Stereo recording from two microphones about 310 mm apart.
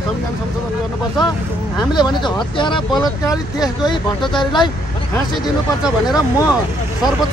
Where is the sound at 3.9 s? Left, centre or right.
Centre.